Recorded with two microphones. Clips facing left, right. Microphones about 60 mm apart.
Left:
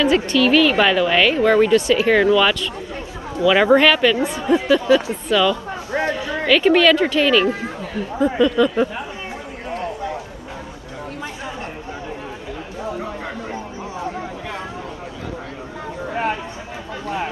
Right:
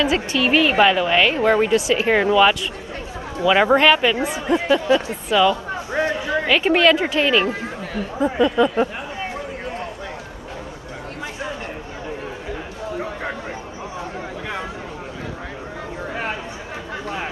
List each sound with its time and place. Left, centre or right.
0.0 s speech: centre